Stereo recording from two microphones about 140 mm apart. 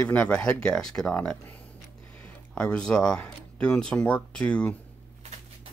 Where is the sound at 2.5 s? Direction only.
5° left (ahead or behind).